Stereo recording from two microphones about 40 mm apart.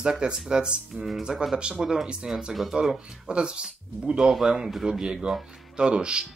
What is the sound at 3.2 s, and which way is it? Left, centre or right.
Speech, right.